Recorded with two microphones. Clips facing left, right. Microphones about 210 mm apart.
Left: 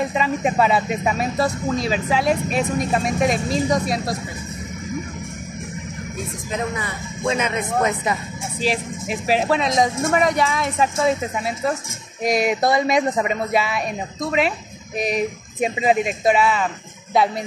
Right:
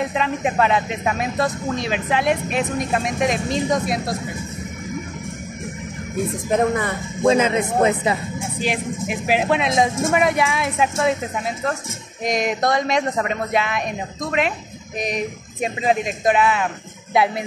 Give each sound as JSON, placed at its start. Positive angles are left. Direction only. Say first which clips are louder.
{"t": 0.1, "sound": "speech", "louder": "left 1 dB", "side_deg": 5}
{"t": 6.5, "sound": "speech", "louder": "right 7 dB", "side_deg": -50}
{"t": 7.2, "sound": "speech", "louder": "right 6 dB", "side_deg": -30}
{"t": 8.6, "sound": "speech", "louder": "left 1 dB", "side_deg": 0}
{"t": 12.2, "sound": "speech", "louder": "left 2 dB", "side_deg": 10}
{"t": 15.6, "sound": "speech", "louder": "left 2 dB", "side_deg": 10}